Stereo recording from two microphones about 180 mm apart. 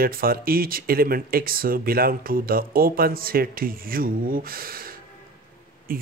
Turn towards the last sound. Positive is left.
turn(degrees=-55)  # may be behind; listen again after turning